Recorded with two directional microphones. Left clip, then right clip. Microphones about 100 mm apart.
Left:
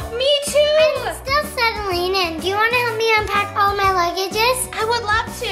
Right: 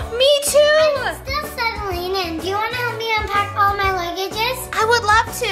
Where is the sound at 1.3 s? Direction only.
60° left (ahead or behind).